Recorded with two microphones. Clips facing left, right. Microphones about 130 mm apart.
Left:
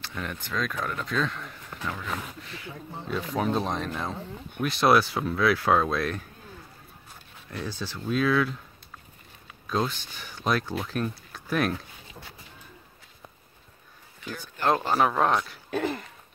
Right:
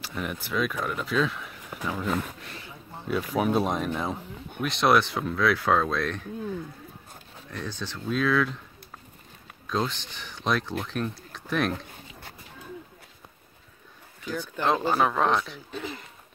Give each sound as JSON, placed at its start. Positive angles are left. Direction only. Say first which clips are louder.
{"t": 0.0, "sound": "speech", "louder": "right 2 dB", "side_deg": -10}
{"t": 3.1, "sound": "speech", "louder": "right 2 dB", "side_deg": -5}
{"t": 4.6, "sound": "speech", "louder": "left 1 dB", "side_deg": 0}
{"t": 7.5, "sound": "speech", "louder": "left 1 dB", "side_deg": 5}
{"t": 9.7, "sound": "speech", "louder": "left 1 dB", "side_deg": 5}
{"t": 14.6, "sound": "speech", "louder": "left 1 dB", "side_deg": 0}
{"t": 15.7, "sound": "a sound", "louder": "left 8 dB", "side_deg": 55}